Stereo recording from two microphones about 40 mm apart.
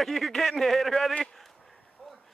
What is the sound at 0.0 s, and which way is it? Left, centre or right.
Speech, centre.